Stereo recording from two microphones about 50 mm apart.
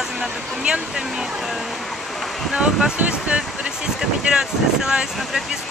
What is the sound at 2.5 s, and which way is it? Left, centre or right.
Speech, centre.